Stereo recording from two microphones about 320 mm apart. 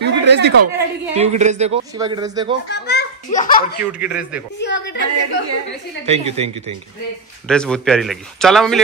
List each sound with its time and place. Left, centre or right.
0.0 s a sound: right
1.1 s speech: centre
2.7 s a child's voice: left
3.8 s a man's voice: centre
4.6 s a woman's voice: left
6.0 s speech: centre
7.4 s a man's voice: centre